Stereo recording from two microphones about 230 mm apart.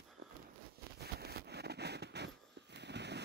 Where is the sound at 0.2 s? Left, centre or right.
Right.